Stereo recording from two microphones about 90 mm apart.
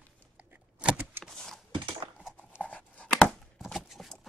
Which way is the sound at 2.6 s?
15° left (ahead or behind).